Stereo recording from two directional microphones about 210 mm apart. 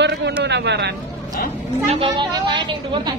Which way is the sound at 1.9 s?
25° right (ahead or behind).